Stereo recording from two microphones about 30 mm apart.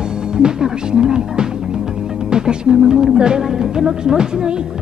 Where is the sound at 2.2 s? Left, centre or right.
Right.